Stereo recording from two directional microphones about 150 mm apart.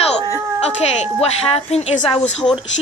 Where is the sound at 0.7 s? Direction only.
45° left (ahead or behind).